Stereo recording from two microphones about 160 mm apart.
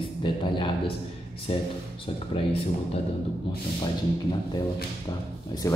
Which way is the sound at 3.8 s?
30° left (ahead or behind).